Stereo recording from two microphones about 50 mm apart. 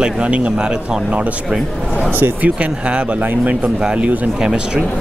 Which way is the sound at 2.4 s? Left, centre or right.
Right.